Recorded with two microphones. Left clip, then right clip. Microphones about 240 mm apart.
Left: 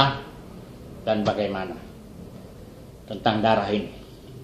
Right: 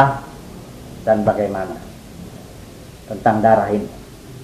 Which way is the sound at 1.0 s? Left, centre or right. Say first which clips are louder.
Right 7 dB; centre.